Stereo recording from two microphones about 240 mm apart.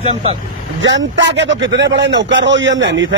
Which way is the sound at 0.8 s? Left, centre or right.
Right.